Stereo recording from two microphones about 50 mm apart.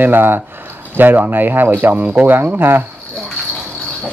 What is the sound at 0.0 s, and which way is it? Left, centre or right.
Speech, right.